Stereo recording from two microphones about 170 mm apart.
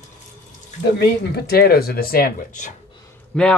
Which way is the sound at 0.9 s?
70° left (ahead or behind).